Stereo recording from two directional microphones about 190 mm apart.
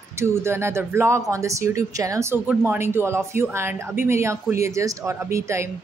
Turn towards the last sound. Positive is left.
turn(degrees=-15)  # may be behind; listen again after turning